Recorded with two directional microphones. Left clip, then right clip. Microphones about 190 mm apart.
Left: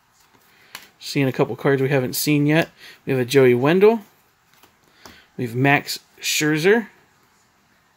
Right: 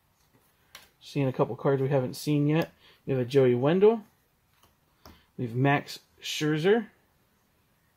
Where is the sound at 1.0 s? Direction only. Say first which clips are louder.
Left 7 dB; 35° left (ahead or behind).